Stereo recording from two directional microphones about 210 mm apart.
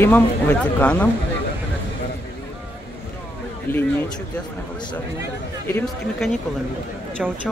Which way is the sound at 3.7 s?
10° left (ahead or behind).